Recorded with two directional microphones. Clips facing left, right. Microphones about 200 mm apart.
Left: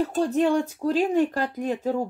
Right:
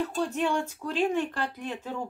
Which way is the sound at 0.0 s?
35° left (ahead or behind).